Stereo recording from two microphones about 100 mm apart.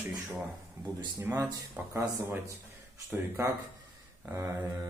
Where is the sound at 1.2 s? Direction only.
25° right (ahead or behind).